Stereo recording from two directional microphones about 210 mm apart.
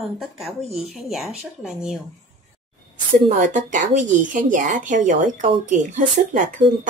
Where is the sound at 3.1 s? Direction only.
35° right (ahead or behind).